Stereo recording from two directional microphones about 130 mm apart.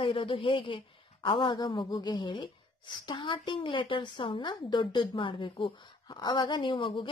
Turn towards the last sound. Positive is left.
turn(degrees=40)  # may be behind; listen again after turning